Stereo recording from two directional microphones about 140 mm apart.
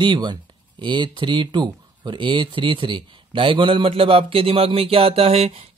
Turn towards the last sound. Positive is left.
turn(degrees=-45)  # may be behind; listen again after turning